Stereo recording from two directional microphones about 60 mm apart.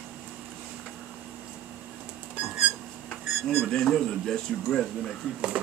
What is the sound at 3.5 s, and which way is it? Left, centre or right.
Speech, centre.